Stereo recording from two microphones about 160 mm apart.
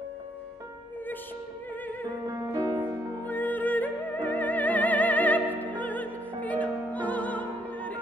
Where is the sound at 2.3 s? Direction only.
20° right (ahead or behind).